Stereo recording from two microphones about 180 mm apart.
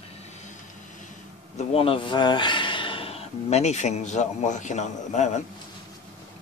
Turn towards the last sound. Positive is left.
turn(degrees=40)  # may be behind; listen again after turning